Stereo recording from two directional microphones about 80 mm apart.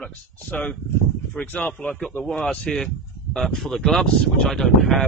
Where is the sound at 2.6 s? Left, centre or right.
Centre.